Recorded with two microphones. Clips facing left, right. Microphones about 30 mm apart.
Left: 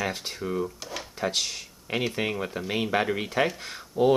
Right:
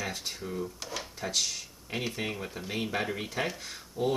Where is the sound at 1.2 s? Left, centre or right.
Left.